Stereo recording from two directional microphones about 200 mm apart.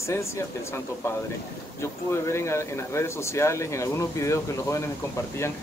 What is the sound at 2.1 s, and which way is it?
Speech, 15° left (ahead or behind).